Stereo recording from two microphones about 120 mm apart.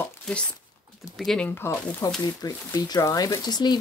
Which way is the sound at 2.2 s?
30° left (ahead or behind).